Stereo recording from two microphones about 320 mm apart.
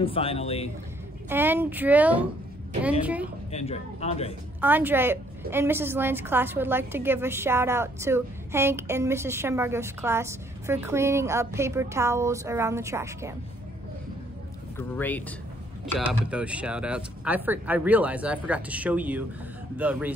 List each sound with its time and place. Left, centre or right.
0.0 s a man's voice: centre
1.3 s speech: centre
3.5 s a man's voice: centre
4.6 s a woman's voice: centre
14.8 s speech: centre